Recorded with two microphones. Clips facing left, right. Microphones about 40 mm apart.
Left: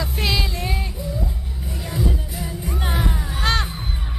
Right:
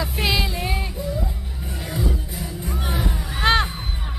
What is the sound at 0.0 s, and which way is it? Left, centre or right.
Music, centre.